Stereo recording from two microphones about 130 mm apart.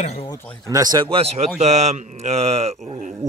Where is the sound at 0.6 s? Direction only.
30° right (ahead or behind).